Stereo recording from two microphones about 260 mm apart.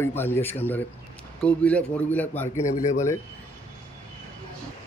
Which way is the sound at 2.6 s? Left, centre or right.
Left.